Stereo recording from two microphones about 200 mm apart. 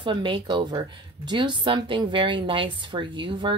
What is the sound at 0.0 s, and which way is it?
Speech, 25° right (ahead or behind).